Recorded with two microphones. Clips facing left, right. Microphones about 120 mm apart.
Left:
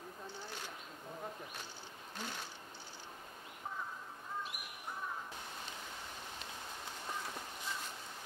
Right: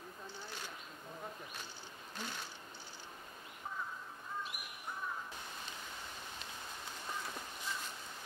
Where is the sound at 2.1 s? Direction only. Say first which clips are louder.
Even; 40° left (ahead or behind).